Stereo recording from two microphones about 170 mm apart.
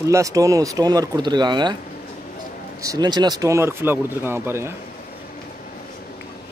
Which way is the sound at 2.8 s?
20° right (ahead or behind).